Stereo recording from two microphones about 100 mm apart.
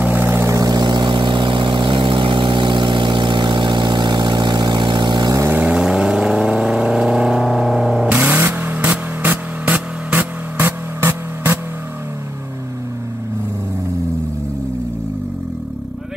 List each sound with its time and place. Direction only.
0.0 s vehicle: 20° right (ahead or behind)
0.6 s vehicle: 40° right (ahead or behind)
5.6 s vehicle: 10° right (ahead or behind)